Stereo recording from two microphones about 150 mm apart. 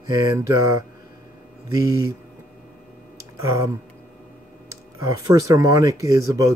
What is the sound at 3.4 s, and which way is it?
Speech, 20° right (ahead or behind).